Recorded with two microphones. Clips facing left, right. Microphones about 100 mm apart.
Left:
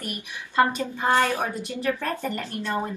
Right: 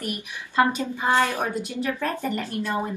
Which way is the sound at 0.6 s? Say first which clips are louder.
Even; 15° right (ahead or behind).